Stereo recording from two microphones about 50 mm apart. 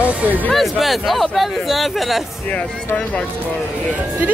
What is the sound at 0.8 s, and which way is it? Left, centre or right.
Speech, centre.